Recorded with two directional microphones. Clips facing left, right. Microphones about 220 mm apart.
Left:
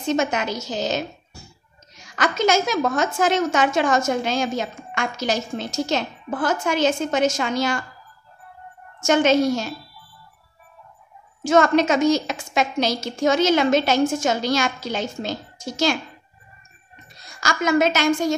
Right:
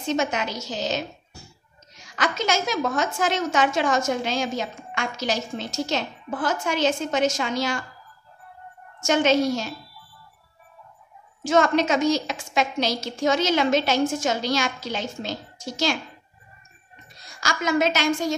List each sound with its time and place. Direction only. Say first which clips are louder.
0.1 s a woman's voice: left 3 dB; 50° left (ahead or behind)
9.0 s a woman's voice: left 3 dB; 50° left (ahead or behind)
11.4 s a woman's voice: left 3 dB; 50° left (ahead or behind)
17.4 s a woman's voice: left 3 dB; 50° left (ahead or behind)